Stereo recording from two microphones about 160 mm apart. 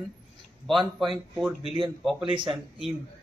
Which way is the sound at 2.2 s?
35° right (ahead or behind).